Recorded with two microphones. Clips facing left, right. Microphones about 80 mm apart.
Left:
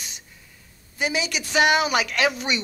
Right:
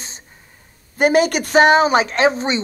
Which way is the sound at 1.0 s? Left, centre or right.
Right.